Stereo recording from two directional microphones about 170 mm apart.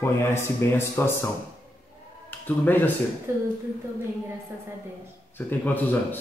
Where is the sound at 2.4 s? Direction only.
10° left (ahead or behind).